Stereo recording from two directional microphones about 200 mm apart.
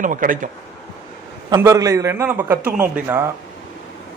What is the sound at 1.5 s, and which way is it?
A man's voice, 15° right (ahead or behind).